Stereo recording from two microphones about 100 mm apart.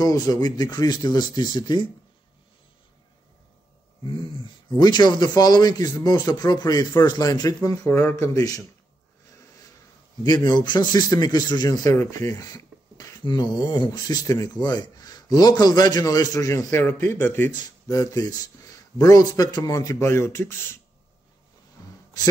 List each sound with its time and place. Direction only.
0.0 s speech: 40° left (ahead or behind)
4.7 s speech: 45° left (ahead or behind)
10.2 s speech: 45° left (ahead or behind)
16.8 s speech: 20° left (ahead or behind)
17.6 s speech: 40° left (ahead or behind)